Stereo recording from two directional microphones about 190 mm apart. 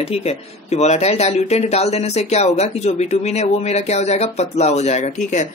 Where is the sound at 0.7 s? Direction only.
35° left (ahead or behind).